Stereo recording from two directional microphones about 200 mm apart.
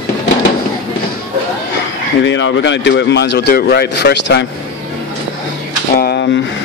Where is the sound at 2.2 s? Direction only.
70° left (ahead or behind).